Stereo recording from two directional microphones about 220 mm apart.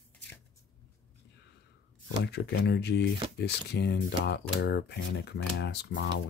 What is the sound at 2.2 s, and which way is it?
Speech, 50° left (ahead or behind).